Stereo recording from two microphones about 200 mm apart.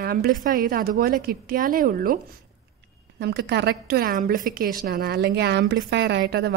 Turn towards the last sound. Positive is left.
turn(degrees=-55)  # may be behind; listen again after turning